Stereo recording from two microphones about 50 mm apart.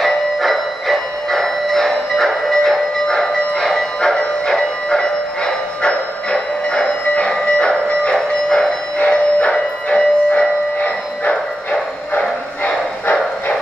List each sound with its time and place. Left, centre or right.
0.0 s music: centre
5.8 s train: centre
8.9 s music: left